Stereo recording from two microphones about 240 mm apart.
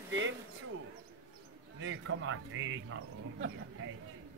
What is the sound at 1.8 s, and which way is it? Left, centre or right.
Speech, right.